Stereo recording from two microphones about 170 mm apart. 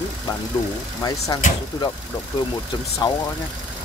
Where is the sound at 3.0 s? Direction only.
25° left (ahead or behind).